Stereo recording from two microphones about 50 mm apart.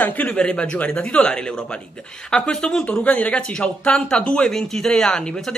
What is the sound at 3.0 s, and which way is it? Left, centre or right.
A woman's voice, left.